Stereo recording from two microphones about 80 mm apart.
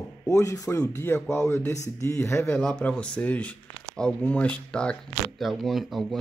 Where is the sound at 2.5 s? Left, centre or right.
Centre.